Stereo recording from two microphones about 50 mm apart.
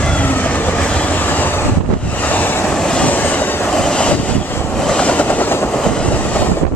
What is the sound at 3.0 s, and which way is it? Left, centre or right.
Train, left.